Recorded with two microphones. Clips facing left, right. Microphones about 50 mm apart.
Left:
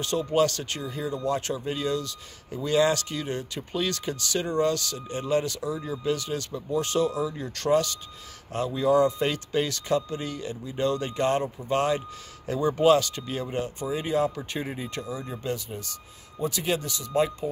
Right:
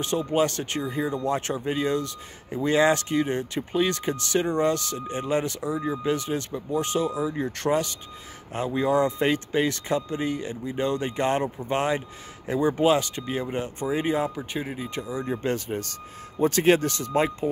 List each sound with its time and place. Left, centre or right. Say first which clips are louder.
0.0 s speech: even; right
7.2 s speech: right 1 dB; right
13.7 s speech: right 2 dB; right
14.6 s speech: even; centre
15.0 s speech: right 6 dB; centre
15.2 s speech: right 5 dB; right
15.5 s speech: right 5 dB; right
17.1 s speech: even; right